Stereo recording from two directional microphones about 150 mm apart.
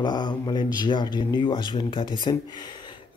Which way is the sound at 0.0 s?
30° left (ahead or behind).